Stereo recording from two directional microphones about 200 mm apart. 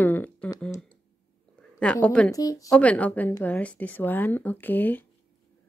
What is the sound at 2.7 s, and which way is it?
A woman's voice, 5° left (ahead or behind).